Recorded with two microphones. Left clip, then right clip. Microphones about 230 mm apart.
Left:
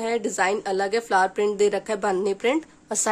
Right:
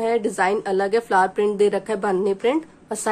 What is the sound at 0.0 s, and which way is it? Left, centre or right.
A woman's voice, centre.